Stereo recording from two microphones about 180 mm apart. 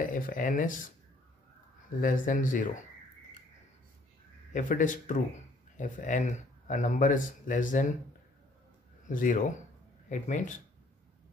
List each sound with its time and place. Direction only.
0.0 s speech: 50° left (ahead or behind)
2.0 s speech: 50° left (ahead or behind)
4.5 s speech: 45° left (ahead or behind)
9.0 s speech: 45° left (ahead or behind)